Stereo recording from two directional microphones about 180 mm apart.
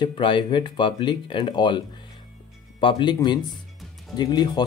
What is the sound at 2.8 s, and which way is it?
Speech, 25° left (ahead or behind).